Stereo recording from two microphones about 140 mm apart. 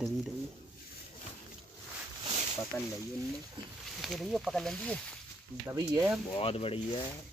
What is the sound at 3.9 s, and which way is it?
Speech, centre (ahead or behind).